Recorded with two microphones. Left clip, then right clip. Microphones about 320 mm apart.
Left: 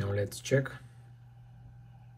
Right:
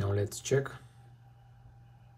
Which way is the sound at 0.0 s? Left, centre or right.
Centre.